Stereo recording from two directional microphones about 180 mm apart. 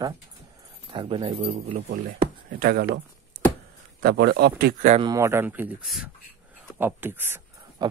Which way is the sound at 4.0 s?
60° right (ahead or behind).